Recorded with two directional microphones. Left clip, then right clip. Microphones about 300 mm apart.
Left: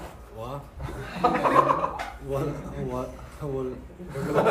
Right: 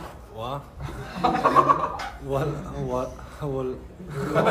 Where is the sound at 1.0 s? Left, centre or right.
Left.